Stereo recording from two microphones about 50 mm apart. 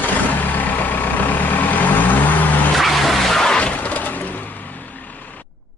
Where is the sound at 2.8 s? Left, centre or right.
Centre.